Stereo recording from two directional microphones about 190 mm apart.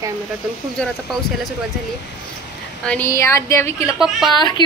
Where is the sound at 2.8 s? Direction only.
10° left (ahead or behind).